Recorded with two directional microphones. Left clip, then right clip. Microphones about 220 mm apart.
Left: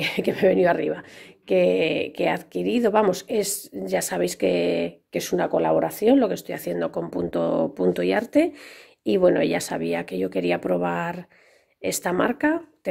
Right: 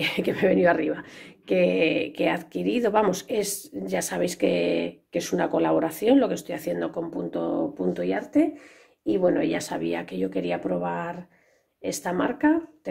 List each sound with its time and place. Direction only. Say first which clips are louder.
0.0 s speech: left 3 dB; 25° left (ahead or behind); by 12.5 s 40° left (ahead or behind)